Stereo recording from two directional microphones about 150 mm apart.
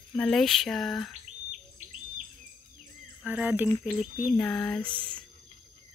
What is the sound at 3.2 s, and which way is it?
A woman's voice, 10° right (ahead or behind).